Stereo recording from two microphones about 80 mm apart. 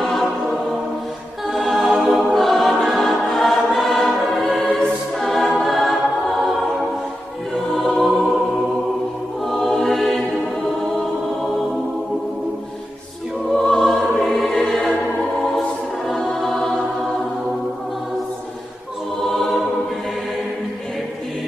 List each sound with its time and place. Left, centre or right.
1.5 s choir: centre
7.7 s music: centre
9.5 s music: centre
13.6 s music: centre
16.1 s music: centre
19.2 s music: centre